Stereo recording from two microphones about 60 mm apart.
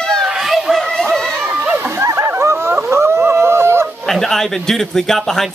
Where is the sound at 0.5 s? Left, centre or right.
Centre.